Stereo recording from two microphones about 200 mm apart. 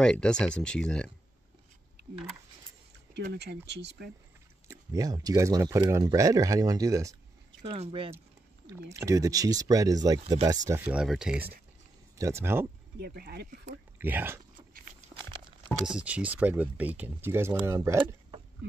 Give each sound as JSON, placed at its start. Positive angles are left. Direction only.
{"t": 0.0, "sound": "speech", "side_deg": 5}
{"t": 3.2, "sound": "speech", "side_deg": -55}
{"t": 4.6, "sound": "speech", "side_deg": -20}
{"t": 7.7, "sound": "speech", "side_deg": -25}
{"t": 8.9, "sound": "speech", "side_deg": -15}
{"t": 13.0, "sound": "speech", "side_deg": -50}
{"t": 13.9, "sound": "speech", "side_deg": -10}
{"t": 15.8, "sound": "speech", "side_deg": -5}
{"t": 18.6, "sound": "speech", "side_deg": -65}